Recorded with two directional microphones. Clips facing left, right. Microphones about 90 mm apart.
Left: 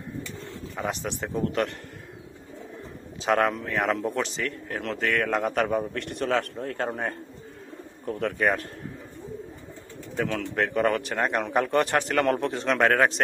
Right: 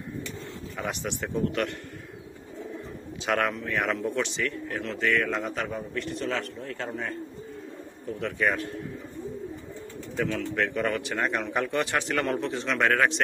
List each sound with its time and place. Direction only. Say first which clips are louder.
0.7 s a man's voice: left 2 dB; 35° left (ahead or behind)
3.3 s a man's voice: left 3 dB; 35° left (ahead or behind)
10.2 s speech: even; 60° left (ahead or behind)
10.5 s a man's voice: left 3 dB; 40° left (ahead or behind)